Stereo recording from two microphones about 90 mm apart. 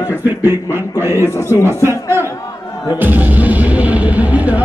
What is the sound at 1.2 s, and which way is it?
Speech, 30° left (ahead or behind).